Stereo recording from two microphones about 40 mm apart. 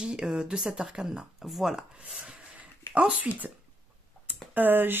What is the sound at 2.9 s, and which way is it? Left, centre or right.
Speech, right.